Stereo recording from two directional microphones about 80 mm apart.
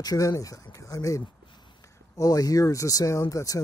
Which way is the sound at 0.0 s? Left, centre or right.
Left.